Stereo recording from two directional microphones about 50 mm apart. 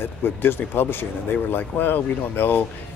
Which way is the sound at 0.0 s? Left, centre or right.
Left.